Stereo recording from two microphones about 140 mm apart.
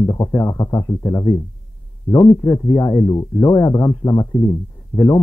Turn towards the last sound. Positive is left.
turn(degrees=30)  # may be behind; listen again after turning